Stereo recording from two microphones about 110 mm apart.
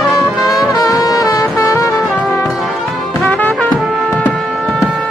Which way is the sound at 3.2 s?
15° left (ahead or behind).